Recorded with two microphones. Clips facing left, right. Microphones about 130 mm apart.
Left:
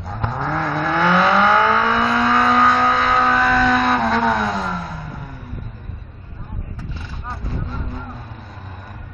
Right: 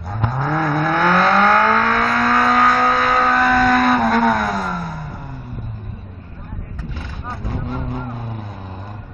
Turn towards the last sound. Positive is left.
turn(degrees=-55)  # may be behind; listen again after turning